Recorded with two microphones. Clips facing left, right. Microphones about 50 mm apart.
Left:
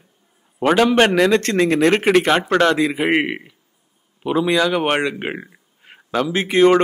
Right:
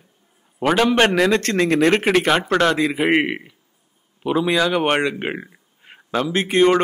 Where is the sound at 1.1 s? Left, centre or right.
Centre.